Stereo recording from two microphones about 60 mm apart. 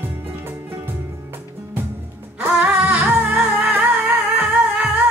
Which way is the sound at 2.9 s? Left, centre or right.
Right.